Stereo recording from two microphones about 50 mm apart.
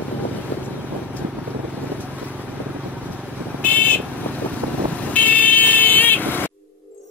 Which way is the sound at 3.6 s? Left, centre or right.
Left.